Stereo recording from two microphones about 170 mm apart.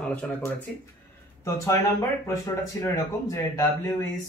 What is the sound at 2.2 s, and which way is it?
Speech, 20° left (ahead or behind).